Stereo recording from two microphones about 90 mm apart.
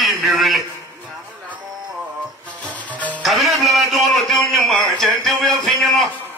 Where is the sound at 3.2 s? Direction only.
Centre (ahead or behind).